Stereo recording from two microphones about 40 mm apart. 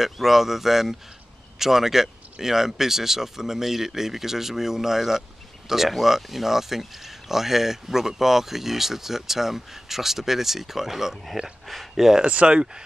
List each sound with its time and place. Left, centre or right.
0.0 s speech: centre
12.2 s speech: right